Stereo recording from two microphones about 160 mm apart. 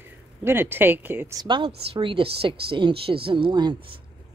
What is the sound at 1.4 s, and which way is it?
A woman's voice, 30° right (ahead or behind).